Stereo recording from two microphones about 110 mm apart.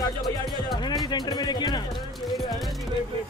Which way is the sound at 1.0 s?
40° left (ahead or behind).